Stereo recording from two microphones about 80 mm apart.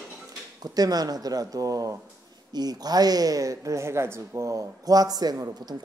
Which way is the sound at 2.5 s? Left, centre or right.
Right.